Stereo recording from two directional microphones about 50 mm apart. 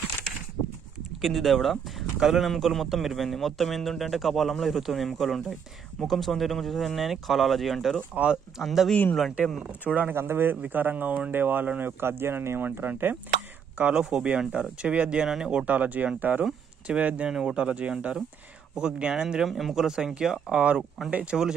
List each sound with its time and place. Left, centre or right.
1.2 s a man's voice: centre
8.1 s speech: centre
8.5 s a man's voice: centre
9.6 s speech: right
10.1 s speech: right
10.6 s speech: right
13.9 s speech: centre
15.2 s speech: centre
15.5 s speech: right
16.8 s speech: right
19.2 s speech: centre; by 21.4 s right